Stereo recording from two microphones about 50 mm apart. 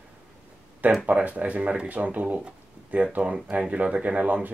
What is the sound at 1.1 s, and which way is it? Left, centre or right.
Speech, right.